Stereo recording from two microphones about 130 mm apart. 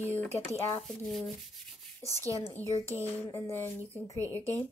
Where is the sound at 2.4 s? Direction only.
20° left (ahead or behind).